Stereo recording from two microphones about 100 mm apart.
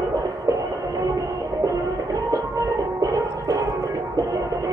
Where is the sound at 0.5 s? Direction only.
35° right (ahead or behind).